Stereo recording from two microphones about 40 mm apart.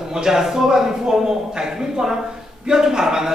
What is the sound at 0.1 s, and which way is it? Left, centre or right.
Speech, centre.